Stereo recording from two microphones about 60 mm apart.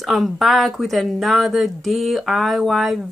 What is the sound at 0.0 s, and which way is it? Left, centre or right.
Speech, centre.